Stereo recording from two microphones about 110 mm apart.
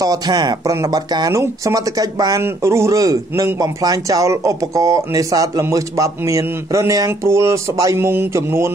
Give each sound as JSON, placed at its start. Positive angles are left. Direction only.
{"t": 0.0, "sound": "speech", "side_deg": -35}
{"t": 2.4, "sound": "a man's voice", "side_deg": -25}